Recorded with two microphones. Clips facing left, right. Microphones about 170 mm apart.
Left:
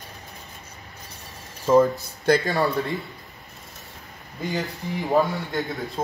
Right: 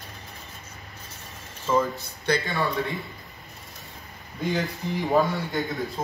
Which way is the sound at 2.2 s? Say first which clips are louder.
Left 6 dB; 40° left (ahead or behind).